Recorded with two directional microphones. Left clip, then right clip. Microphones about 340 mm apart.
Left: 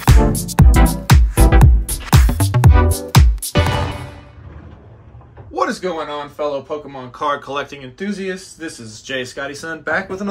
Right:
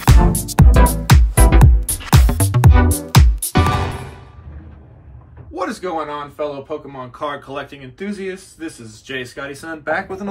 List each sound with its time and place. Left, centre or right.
0.0 s music: centre
5.5 s speech: centre